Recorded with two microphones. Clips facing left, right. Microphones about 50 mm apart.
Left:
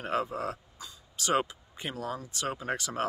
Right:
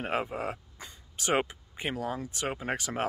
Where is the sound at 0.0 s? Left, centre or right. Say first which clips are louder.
Even; right.